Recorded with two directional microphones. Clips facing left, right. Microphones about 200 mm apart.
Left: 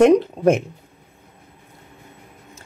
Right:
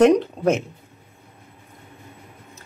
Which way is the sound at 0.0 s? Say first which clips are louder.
Left 2 dB; 15° left (ahead or behind).